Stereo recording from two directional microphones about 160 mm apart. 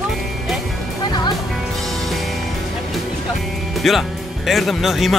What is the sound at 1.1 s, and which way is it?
Music, 25° left (ahead or behind).